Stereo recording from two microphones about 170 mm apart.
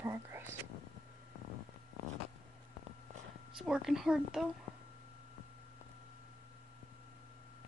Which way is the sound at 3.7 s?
5° right (ahead or behind).